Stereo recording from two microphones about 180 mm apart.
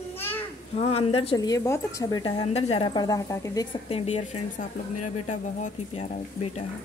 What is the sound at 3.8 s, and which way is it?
A woman's voice, 35° left (ahead or behind).